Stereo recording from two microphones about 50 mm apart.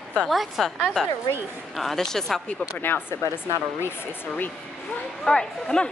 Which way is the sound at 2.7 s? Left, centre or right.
Left.